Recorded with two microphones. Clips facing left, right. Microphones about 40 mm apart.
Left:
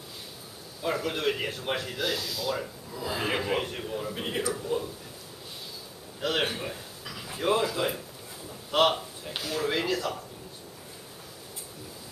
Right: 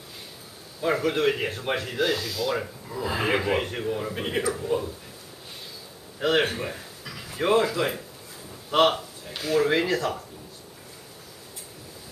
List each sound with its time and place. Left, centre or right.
0.8 s speech: right
1.8 s speech: right
2.6 s speech: right
3.9 s speech: right
6.5 s speech: right
9.4 s speech: right